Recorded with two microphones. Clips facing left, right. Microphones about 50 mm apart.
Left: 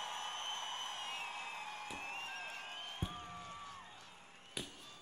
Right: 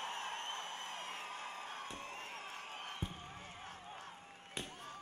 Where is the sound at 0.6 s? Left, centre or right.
Left.